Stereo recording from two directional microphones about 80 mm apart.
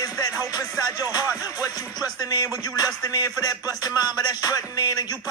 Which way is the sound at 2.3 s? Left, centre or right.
Left.